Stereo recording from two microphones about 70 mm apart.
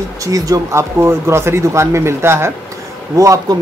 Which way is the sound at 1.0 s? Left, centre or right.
Right.